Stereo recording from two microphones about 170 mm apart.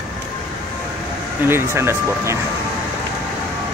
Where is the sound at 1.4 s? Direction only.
15° right (ahead or behind).